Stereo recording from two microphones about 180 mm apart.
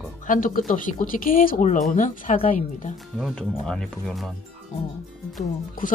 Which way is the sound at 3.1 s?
Centre (ahead or behind).